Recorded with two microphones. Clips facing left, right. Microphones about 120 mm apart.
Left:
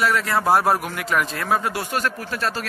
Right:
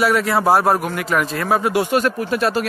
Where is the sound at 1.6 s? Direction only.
15° right (ahead or behind).